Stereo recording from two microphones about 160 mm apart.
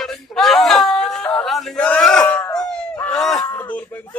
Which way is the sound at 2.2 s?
20° left (ahead or behind).